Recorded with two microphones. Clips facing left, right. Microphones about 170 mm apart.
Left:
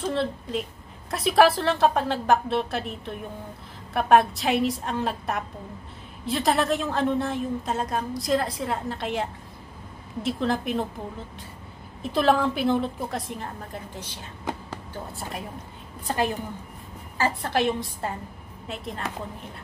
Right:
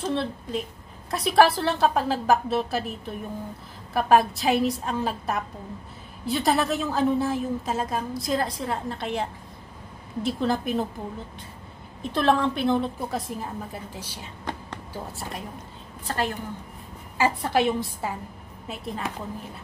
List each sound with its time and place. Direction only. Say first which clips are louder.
0.0 s a woman's voice: left 1 dB; centre (ahead or behind)
12.0 s a woman's voice: left 1 dB; 5° left (ahead or behind)
16.1 s a woman's voice: left 2 dB; 15° left (ahead or behind)
17.2 s a woman's voice: right 2 dB; 10° right (ahead or behind)